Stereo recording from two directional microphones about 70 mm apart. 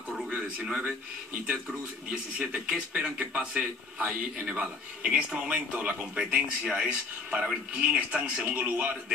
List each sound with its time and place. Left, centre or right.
0.7 s speech: centre
2.0 s speech: centre